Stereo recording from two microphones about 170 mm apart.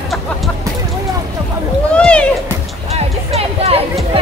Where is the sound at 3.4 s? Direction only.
35° right (ahead or behind).